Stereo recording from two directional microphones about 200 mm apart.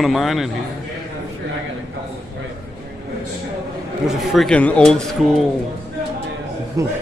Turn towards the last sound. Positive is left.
turn(degrees=-15)  # may be behind; listen again after turning